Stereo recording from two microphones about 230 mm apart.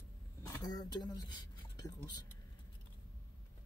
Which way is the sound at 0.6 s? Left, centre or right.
Centre.